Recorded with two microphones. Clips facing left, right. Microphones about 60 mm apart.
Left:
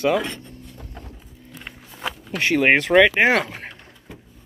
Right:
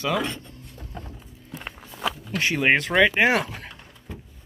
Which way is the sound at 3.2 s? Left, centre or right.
Left.